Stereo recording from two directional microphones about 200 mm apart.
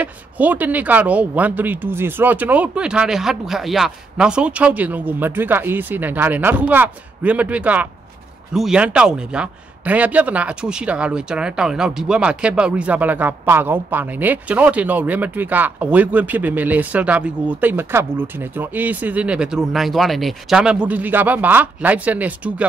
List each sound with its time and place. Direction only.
0.0 s a man's voice: 10° right (ahead or behind)